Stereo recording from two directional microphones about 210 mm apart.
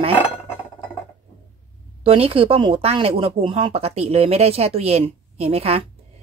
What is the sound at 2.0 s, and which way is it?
Speech, 25° right (ahead or behind).